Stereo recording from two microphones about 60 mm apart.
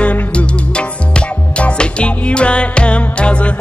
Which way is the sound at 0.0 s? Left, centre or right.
Left.